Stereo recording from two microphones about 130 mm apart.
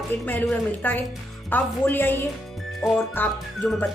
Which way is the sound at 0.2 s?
15° left (ahead or behind).